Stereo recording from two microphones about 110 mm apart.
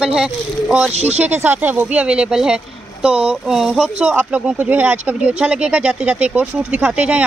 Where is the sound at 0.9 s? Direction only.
75° right (ahead or behind).